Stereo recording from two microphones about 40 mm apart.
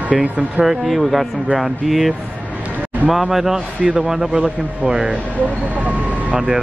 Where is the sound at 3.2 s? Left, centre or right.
Centre.